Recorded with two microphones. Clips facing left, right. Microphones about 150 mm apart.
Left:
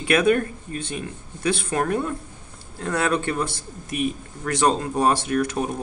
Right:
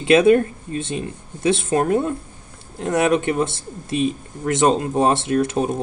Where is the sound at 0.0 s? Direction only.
25° right (ahead or behind).